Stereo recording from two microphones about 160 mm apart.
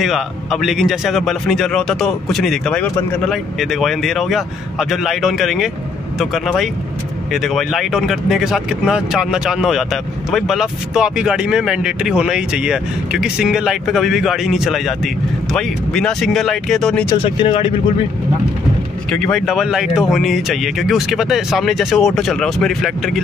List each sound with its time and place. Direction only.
0.0 s speech: centre (ahead or behind)
17.2 s speech: 30° left (ahead or behind)
19.0 s speech: 5° left (ahead or behind)